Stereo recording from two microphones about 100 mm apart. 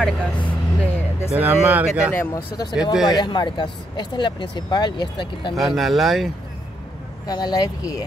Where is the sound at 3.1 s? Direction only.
45° left (ahead or behind).